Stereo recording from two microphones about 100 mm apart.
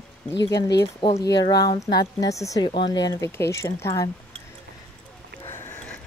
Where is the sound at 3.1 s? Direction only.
30° left (ahead or behind).